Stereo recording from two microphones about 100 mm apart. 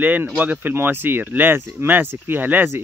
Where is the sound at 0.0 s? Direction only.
15° right (ahead or behind).